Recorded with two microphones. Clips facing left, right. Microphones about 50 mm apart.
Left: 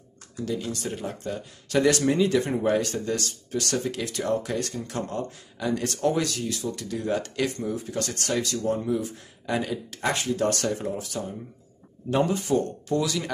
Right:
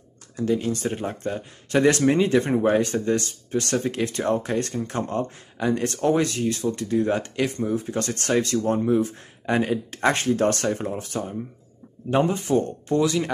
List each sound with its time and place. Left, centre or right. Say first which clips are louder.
0.4 s speech: right 6 dB; right